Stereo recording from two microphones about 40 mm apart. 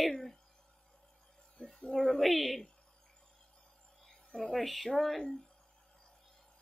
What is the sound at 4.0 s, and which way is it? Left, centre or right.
Speech, centre.